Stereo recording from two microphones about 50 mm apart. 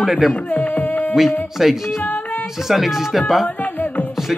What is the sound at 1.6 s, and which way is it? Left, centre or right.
Speech, centre.